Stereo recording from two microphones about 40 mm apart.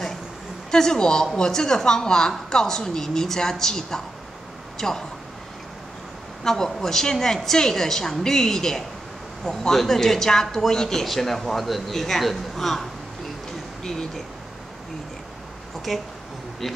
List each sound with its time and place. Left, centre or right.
0.7 s a man's voice: centre
6.4 s a man's voice: centre
13.8 s a man's voice: centre
15.9 s speech: centre